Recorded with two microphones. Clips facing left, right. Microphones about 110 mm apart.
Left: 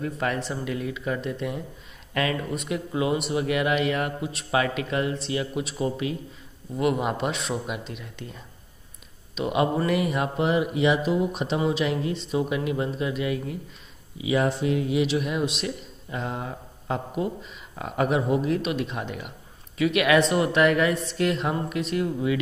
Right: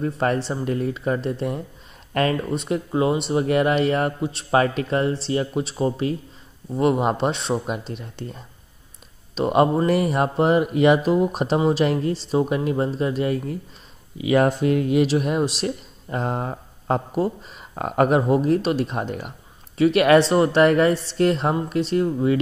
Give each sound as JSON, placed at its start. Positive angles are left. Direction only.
{"t": 0.0, "sound": "speech", "side_deg": -35}
{"t": 14.1, "sound": "speech", "side_deg": -55}
{"t": 15.0, "sound": "speech", "side_deg": -40}